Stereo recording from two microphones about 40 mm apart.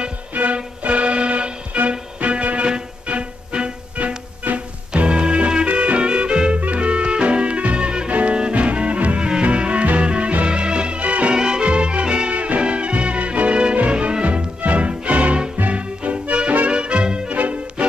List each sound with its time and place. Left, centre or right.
0.3 s music: right
4.5 s music: right
4.9 s music: right
8.1 s music: right
8.4 s music: right
11.3 s music: centre